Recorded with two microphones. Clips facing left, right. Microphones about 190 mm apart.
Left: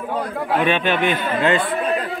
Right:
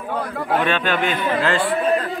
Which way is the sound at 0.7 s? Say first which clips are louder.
Left 2 dB; 15° left (ahead or behind).